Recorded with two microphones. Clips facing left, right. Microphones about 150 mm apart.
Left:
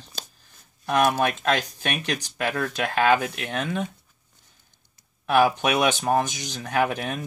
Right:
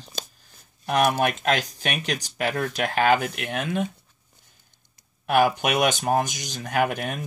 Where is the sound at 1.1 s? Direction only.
Centre (ahead or behind).